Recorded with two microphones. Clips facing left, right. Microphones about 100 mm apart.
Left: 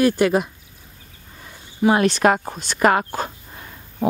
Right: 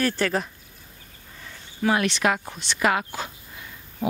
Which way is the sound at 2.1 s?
40° left (ahead or behind).